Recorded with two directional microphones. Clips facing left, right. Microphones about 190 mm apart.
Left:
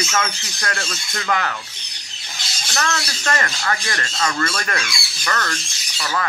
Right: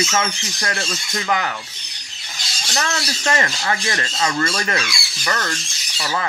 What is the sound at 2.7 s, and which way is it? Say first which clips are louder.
Speech: even; 20° right (ahead or behind).